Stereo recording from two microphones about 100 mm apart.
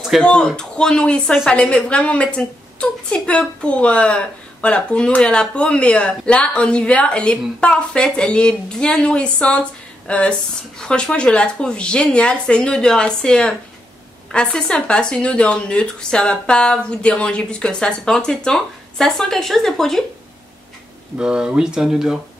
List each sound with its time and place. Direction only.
0.2 s a woman's voice: 10° left (ahead or behind)
21.2 s speech: 10° right (ahead or behind)